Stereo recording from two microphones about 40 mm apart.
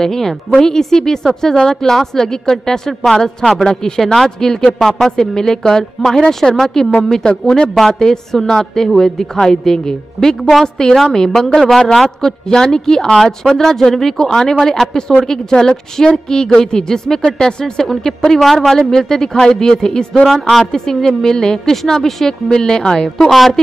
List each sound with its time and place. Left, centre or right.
0.0 s a woman's voice: centre
3.6 s a woman's voice: centre
4.0 s a woman's voice: centre
7.2 s speech: left
7.7 s a woman's voice: centre
11.1 s a woman's voice: centre
18.4 s a woman's voice: centre